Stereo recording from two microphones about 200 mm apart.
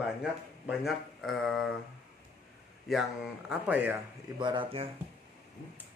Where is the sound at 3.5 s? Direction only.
10° right (ahead or behind).